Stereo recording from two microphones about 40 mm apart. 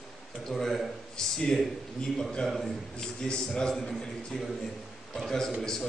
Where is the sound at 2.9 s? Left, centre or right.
Left.